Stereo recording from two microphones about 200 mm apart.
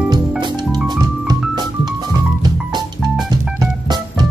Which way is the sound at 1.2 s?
20° right (ahead or behind).